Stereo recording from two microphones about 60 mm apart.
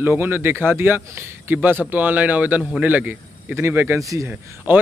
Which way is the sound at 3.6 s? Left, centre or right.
Right.